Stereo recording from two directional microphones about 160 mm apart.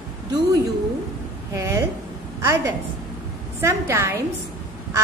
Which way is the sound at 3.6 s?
15° right (ahead or behind).